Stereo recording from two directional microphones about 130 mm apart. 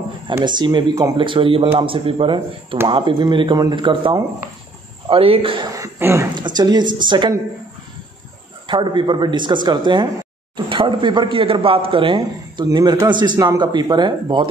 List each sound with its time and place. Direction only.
0.5 s speech: 35° right (ahead or behind)
1.1 s speech: 40° right (ahead or behind)
5.7 s speech: 20° right (ahead or behind)
6.3 s speech: 35° right (ahead or behind)
8.6 s speech: 40° right (ahead or behind)